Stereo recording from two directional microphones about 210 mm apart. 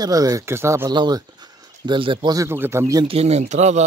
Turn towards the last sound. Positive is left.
turn(degrees=-35)  # may be behind; listen again after turning